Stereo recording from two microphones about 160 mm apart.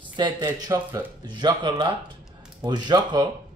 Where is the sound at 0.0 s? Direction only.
30° right (ahead or behind).